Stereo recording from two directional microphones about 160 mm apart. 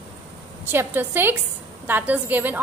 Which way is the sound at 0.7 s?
15° right (ahead or behind).